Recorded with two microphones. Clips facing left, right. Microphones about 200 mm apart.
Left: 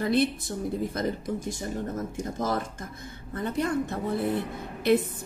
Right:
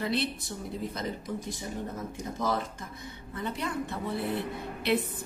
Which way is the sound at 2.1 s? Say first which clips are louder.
Even; 50° left (ahead or behind).